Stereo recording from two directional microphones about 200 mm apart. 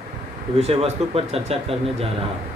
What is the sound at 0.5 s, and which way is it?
Speech, 30° right (ahead or behind).